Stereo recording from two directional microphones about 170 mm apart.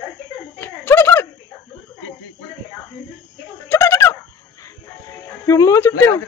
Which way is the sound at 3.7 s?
15° left (ahead or behind).